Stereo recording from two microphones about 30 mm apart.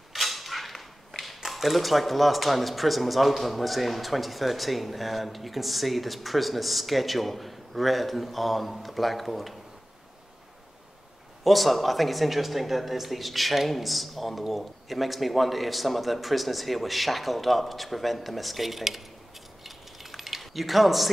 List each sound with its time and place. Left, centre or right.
0.1 s creak: centre
1.5 s speech: centre
11.4 s speech: centre
19.6 s a sound: centre